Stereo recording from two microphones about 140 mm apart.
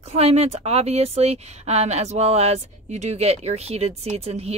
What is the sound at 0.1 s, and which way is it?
Speech, 45° right (ahead or behind).